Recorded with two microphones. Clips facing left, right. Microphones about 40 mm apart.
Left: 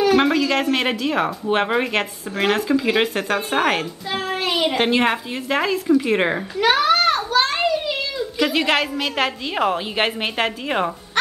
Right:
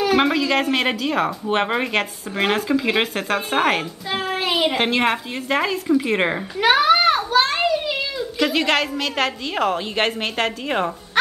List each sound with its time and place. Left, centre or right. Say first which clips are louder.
0.0 s a woman's voice: left 2 dB; centre